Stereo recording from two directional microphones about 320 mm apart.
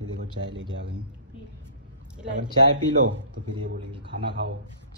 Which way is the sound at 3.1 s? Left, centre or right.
Right.